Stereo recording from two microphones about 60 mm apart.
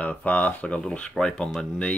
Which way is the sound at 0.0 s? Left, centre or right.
Left.